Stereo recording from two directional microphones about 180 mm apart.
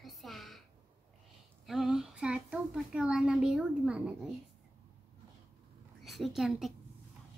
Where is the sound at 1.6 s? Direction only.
Centre (ahead or behind).